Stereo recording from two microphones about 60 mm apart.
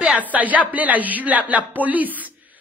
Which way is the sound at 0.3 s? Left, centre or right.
Right.